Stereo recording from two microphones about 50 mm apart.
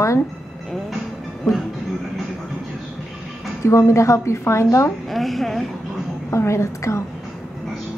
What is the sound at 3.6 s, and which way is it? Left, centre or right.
A woman's voice, left.